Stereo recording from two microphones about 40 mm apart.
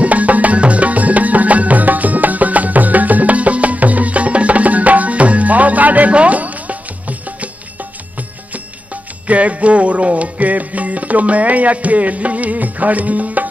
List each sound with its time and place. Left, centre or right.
0.0 s music: right
9.3 s music: right